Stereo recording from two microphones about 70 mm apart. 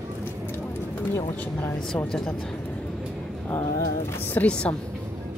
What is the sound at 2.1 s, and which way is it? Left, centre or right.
Speech, centre.